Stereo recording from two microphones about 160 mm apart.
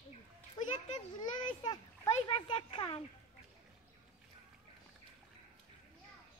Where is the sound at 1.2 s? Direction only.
25° left (ahead or behind).